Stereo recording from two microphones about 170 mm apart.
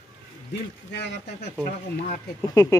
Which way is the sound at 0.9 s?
85° left.